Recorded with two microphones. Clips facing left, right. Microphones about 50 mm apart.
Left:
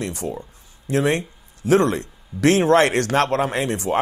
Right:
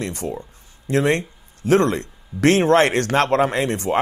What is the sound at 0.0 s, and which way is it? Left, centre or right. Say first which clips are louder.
Speech: right 1 dB; right.